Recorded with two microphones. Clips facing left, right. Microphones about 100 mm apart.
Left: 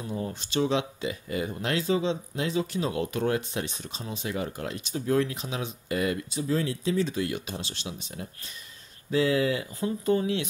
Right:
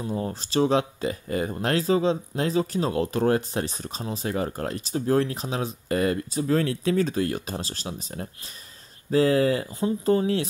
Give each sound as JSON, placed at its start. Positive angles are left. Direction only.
{"t": 0.0, "sound": "speech", "side_deg": -35}
{"t": 6.4, "sound": "speech", "side_deg": -60}
{"t": 7.1, "sound": "speech", "side_deg": -40}